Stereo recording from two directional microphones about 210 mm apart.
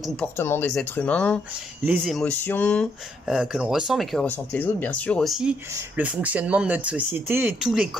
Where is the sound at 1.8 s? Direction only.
5° right (ahead or behind).